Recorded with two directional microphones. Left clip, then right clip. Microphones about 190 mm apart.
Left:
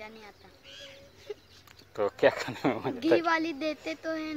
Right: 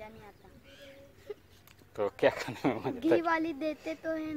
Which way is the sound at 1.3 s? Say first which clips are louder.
Left 3 dB; 35° right (ahead or behind).